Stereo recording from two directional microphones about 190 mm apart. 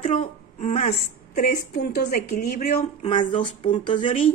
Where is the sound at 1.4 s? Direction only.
50° left (ahead or behind).